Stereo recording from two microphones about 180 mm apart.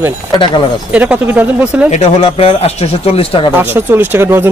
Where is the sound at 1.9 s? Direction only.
30° left (ahead or behind).